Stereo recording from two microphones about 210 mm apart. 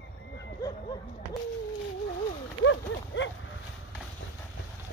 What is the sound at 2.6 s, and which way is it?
Clip-clop, 60° left (ahead or behind).